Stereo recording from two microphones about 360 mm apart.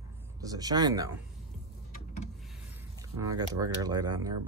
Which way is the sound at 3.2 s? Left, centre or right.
Centre.